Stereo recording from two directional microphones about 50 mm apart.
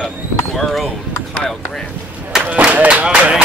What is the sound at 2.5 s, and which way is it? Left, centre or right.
Speech, right.